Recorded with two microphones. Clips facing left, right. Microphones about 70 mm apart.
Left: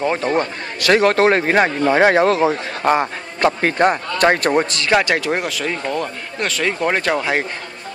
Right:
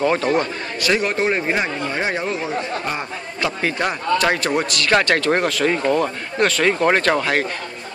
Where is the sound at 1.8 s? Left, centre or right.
Left.